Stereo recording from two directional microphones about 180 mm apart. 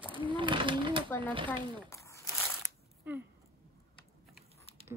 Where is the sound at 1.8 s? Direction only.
15° left (ahead or behind).